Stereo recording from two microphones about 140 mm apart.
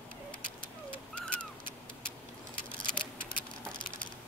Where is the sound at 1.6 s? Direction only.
85° right.